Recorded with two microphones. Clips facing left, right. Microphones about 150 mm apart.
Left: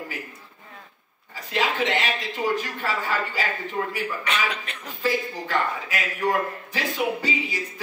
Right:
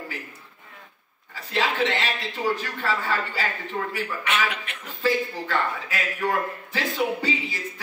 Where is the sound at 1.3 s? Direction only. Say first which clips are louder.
Even; 15° left (ahead or behind).